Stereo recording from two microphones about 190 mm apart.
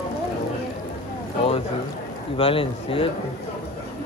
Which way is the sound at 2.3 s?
30° left (ahead or behind).